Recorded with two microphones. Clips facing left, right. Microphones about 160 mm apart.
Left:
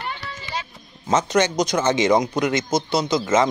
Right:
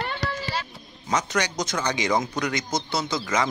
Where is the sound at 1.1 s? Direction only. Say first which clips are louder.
Left 7 dB; 20° left (ahead or behind).